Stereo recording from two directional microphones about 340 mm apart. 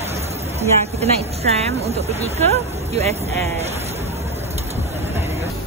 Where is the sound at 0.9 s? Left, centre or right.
Centre.